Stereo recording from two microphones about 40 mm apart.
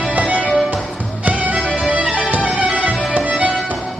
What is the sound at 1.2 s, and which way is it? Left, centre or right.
Music, right.